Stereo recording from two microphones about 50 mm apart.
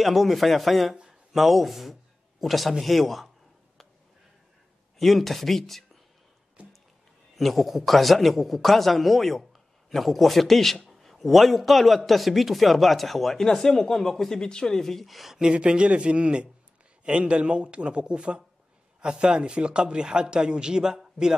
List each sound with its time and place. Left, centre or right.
0.0 s speech: centre
4.9 s speech: centre
7.3 s speech: centre
15.3 s a man's voice: centre